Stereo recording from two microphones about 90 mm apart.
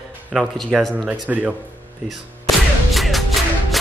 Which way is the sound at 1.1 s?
15° right (ahead or behind).